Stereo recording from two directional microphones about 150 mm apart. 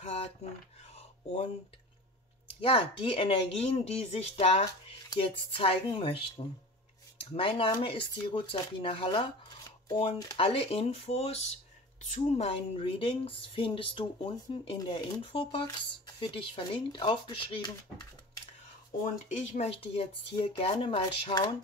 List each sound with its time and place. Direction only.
0.0 s mechanisms: 45° left (ahead or behind)
2.6 s speech: 40° left (ahead or behind)
19.2 s speech: 50° left (ahead or behind); by 21.5 s 35° left (ahead or behind)